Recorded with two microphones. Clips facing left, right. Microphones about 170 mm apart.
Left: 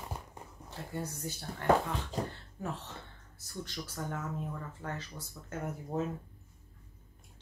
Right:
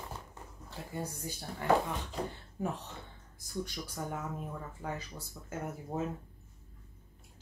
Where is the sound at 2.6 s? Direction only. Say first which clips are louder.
Right 2 dB; 15° right (ahead or behind).